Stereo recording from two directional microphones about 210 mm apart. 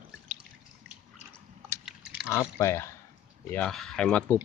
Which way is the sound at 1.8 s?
5° right (ahead or behind).